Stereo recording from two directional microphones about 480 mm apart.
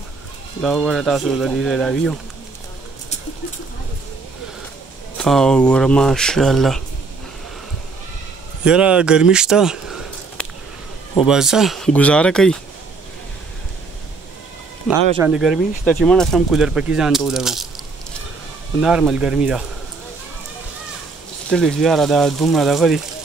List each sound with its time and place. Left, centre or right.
0.6 s speech: centre
5.1 s speech: centre
8.6 s speech: centre
14.9 s speech: centre
18.8 s speech: centre
21.5 s speech: centre